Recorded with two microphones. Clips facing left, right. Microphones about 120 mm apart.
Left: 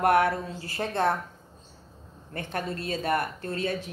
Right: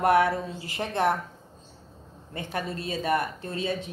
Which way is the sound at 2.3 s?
20° right (ahead or behind).